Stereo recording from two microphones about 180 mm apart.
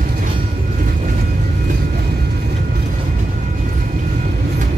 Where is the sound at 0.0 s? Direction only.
50° right (ahead or behind).